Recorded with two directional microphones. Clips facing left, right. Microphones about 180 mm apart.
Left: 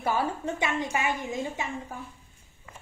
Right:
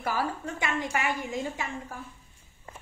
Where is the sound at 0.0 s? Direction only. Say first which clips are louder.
Left 3 dB; 25° left (ahead or behind).